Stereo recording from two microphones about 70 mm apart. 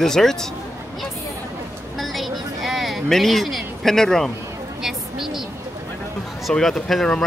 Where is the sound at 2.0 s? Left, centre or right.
Centre.